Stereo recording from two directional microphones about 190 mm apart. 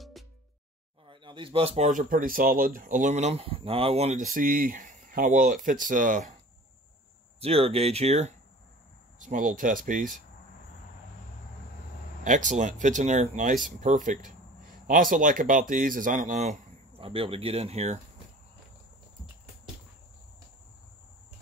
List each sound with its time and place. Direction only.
0.2 s music: centre (ahead or behind)
1.0 s speech: 25° right (ahead or behind); by 6.3 s 45° right (ahead or behind)
7.4 s speech: 30° right (ahead or behind)
12.2 s speech: 40° right (ahead or behind)